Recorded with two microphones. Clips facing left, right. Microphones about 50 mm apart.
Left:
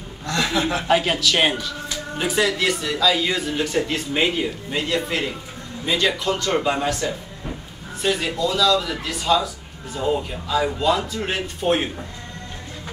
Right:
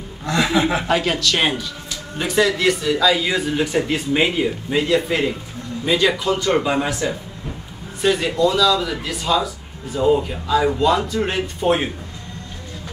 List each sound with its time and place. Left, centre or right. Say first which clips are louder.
0.3 s speech: right 4 dB; centre
0.8 s a man's voice: even; centre